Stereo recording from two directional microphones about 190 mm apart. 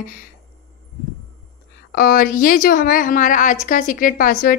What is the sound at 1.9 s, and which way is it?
A woman's voice, 50° left (ahead or behind).